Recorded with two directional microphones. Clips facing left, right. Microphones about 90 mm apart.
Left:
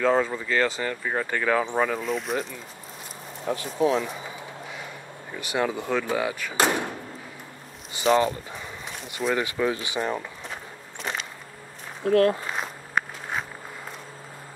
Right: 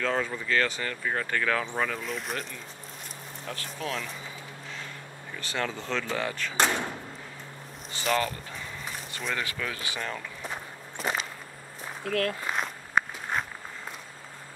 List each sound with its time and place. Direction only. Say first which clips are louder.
0.0 s speech: left 7 dB; 5° left (ahead or behind)
3.4 s speech: left 12 dB; 20° left (ahead or behind)
5.4 s speech: left 6 dB; 15° left (ahead or behind)
8.2 s speech: left 6 dB; 25° left (ahead or behind)
11.0 s a sound: right 1 dB; 5° right (ahead or behind)
12.0 s speech: left 9 dB; 30° left (ahead or behind)
12.5 s walk: even; centre (ahead or behind)